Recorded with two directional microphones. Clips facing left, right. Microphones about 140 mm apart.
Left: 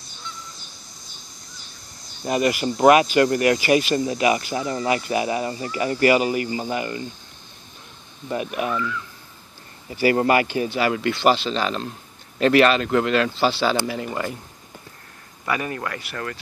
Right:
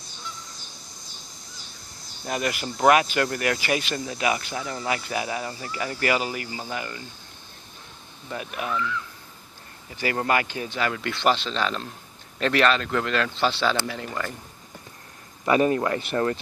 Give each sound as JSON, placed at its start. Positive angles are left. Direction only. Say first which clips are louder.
{"t": 2.3, "sound": "speech", "louder": "left 7 dB", "side_deg": 5}
{"t": 3.9, "sound": "speech", "louder": "left 8 dB", "side_deg": 20}
{"t": 4.2, "sound": "speech", "louder": "left 5 dB", "side_deg": 5}
{"t": 8.3, "sound": "speech", "louder": "left 5 dB", "side_deg": 10}
{"t": 9.9, "sound": "speech", "louder": "left 6 dB", "side_deg": 10}
{"t": 15.4, "sound": "speech", "louder": "right 6 dB", "side_deg": -25}